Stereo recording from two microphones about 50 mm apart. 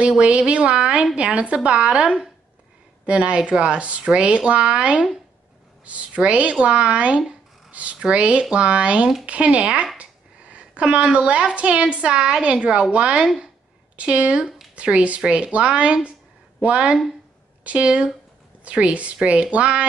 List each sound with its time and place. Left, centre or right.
0.2 s a woman's voice: right